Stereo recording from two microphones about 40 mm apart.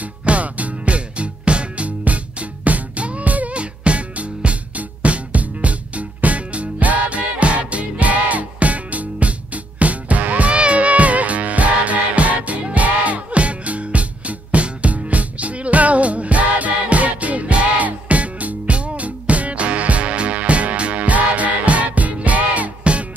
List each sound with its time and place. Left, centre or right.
0.2 s music: right